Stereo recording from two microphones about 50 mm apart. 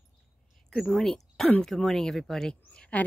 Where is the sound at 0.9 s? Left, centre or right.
Centre.